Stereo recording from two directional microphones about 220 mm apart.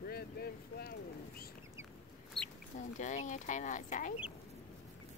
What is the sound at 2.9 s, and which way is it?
Speech, 35° left (ahead or behind).